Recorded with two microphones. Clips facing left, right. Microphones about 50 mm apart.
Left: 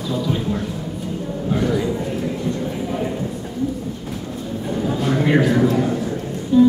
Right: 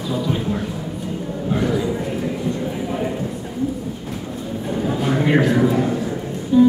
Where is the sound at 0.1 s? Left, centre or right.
Centre.